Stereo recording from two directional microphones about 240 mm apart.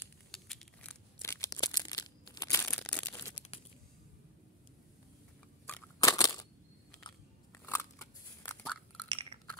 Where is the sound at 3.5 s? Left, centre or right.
Left.